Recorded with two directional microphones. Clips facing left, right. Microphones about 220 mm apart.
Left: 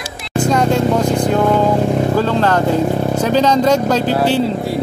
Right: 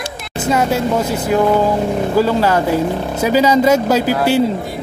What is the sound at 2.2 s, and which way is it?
A man's voice, 10° right (ahead or behind).